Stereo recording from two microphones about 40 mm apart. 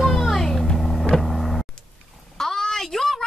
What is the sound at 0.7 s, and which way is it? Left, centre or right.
Vehicle, centre.